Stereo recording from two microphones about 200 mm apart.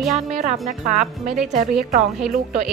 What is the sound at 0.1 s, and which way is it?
A woman's voice, 35° right (ahead or behind).